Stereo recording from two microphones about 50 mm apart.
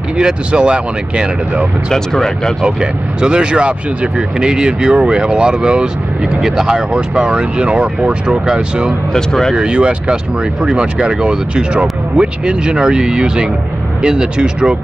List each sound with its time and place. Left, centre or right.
0.2 s speech: centre
1.9 s speech: centre
2.6 s speech: centre
9.1 s speech: centre
9.6 s speech: right